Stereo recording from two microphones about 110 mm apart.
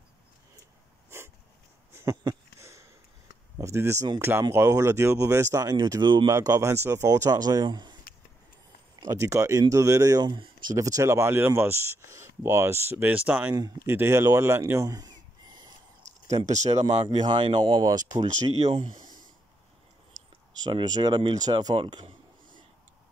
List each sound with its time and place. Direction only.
2.0 s a sound: 25° right (ahead or behind)
3.5 s speech: 25° right (ahead or behind); by 6.3 s 40° right (ahead or behind)
6.3 s speech: 30° right (ahead or behind)
9.0 s speech: 30° right (ahead or behind)
10.8 s speech: 30° right (ahead or behind)
16.4 s speech: 90° right
16.8 s speech: 45° right (ahead or behind)
20.5 s speech: 40° right (ahead or behind)
21.7 s speech: 50° right (ahead or behind)